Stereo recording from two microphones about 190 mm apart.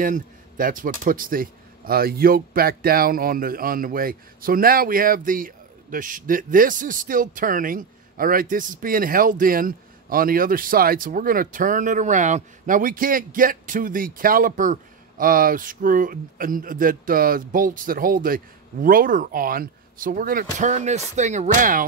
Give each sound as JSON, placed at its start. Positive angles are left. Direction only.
{"t": 0.0, "sound": "speech", "side_deg": -45}